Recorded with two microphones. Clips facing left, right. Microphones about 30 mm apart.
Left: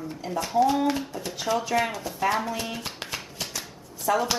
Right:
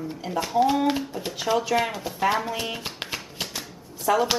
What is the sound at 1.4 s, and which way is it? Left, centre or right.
Speech, centre.